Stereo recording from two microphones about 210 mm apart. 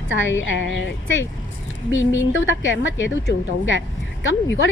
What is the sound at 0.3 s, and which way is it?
Speech, 65° left (ahead or behind).